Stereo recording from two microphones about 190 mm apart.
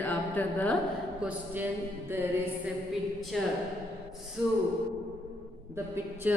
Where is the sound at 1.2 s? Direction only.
10° right (ahead or behind).